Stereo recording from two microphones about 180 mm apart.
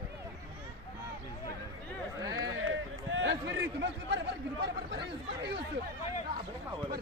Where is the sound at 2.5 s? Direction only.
90° right; by 5.6 s 70° right (ahead or behind).